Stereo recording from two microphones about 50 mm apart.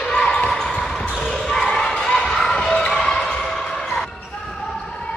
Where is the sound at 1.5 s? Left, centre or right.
Centre.